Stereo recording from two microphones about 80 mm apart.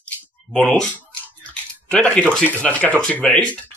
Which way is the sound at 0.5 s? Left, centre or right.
Centre.